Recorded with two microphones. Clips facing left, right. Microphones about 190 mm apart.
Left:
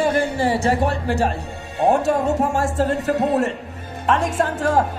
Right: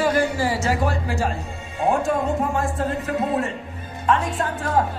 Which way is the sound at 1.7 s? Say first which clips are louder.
Left 3 dB; 75° left (ahead or behind).